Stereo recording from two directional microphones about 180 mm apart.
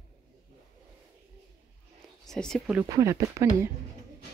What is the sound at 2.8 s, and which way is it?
Speech, 20° right (ahead or behind).